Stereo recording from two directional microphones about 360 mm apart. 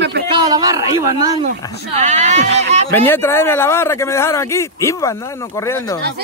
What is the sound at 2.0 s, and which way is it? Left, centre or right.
Speech, centre.